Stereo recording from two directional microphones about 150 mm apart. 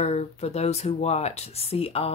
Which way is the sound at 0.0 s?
45° left (ahead or behind).